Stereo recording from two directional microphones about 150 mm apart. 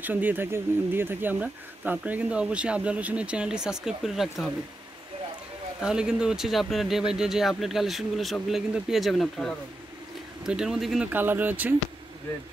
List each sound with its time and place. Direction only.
0.0 s speech: 10° right (ahead or behind)
5.8 s speech: 5° right (ahead or behind)
11.1 s speech: 10° right (ahead or behind)